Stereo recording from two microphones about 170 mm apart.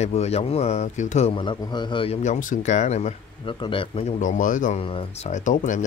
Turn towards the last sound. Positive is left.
turn(degrees=50)  # may be behind; listen again after turning